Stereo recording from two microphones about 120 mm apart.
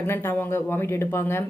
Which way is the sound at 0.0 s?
20° left (ahead or behind).